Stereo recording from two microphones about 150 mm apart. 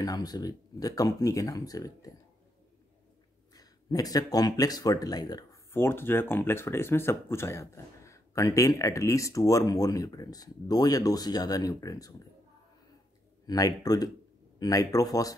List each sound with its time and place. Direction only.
0.0 s speech: 25° left (ahead or behind)
3.5 s speech: 25° left (ahead or behind)
13.5 s speech: 25° left (ahead or behind)